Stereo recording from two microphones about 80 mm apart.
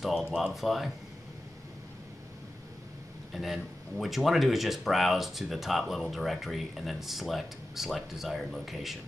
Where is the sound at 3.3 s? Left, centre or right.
Centre.